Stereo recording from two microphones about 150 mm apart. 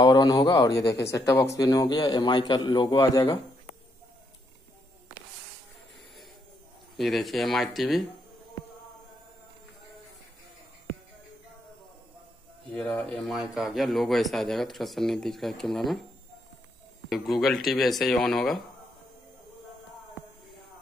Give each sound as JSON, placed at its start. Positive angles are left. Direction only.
{"t": 0.0, "sound": "speech", "side_deg": 30}
{"t": 7.0, "sound": "speech", "side_deg": 0}
{"t": 12.7, "sound": "speech", "side_deg": 10}
{"t": 17.1, "sound": "speech", "side_deg": 0}